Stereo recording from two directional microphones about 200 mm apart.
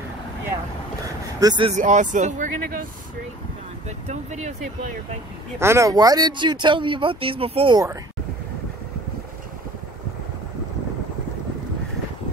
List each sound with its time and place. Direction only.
1.0 s vehicle: 20° right (ahead or behind)
1.7 s speech: 40° right (ahead or behind)
4.1 s speech: 35° right (ahead or behind)
5.6 s speech: 15° right (ahead or behind)